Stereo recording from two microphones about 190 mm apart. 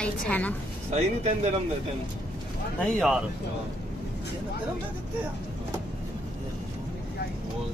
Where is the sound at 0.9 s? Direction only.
35° right (ahead or behind).